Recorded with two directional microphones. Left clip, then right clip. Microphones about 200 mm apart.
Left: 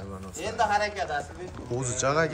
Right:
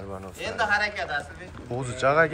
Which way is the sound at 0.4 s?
40° left (ahead or behind).